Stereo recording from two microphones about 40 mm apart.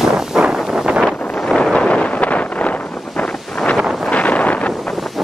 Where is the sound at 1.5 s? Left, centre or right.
Centre.